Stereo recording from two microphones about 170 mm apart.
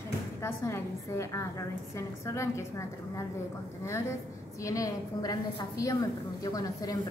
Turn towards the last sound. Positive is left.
turn(degrees=20)  # may be behind; listen again after turning